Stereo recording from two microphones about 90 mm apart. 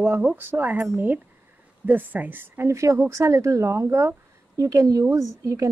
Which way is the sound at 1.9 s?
20° right (ahead or behind).